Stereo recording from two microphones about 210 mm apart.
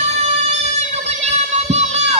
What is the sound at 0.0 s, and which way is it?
Music, 30° right (ahead or behind).